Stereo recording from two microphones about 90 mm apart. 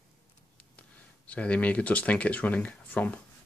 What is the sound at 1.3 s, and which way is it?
Speech, 15° left (ahead or behind).